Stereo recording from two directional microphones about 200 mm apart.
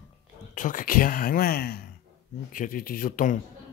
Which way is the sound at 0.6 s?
40° left (ahead or behind).